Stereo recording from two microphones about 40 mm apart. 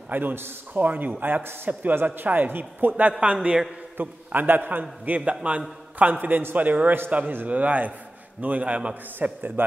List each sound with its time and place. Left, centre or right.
0.1 s speech: right
0.7 s a man's voice: right
1.8 s a man's voice: right
3.1 s a man's voice: right
3.3 s a man's voice: centre
3.9 s a man's voice: right
5.0 s a man's voice: right
9.6 s speech: right